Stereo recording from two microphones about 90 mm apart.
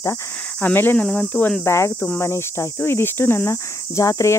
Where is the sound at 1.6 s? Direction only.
30° left (ahead or behind).